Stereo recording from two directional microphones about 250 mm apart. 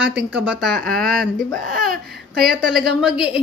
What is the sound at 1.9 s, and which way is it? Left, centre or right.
Speech, right.